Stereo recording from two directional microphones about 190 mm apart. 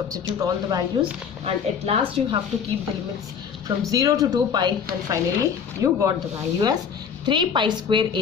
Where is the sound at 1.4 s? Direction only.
30° right (ahead or behind).